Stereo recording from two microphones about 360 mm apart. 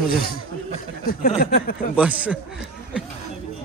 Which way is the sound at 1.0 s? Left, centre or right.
Left.